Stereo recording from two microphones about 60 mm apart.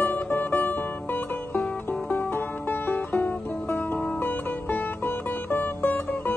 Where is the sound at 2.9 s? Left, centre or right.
Left.